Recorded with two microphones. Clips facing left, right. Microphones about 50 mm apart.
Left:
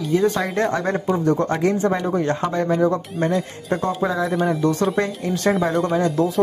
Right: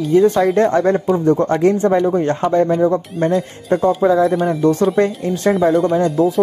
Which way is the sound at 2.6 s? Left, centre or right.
Centre.